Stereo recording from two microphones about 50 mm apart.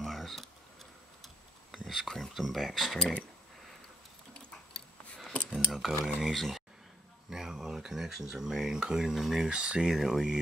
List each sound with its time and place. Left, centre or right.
0.0 s a sound: centre
1.2 s speech: centre
4.7 s a sound: centre
5.7 s speech: centre
9.5 s speech: centre
9.9 s speech: centre